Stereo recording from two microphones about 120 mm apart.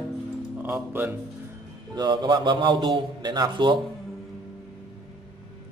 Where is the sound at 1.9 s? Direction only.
35° right (ahead or behind).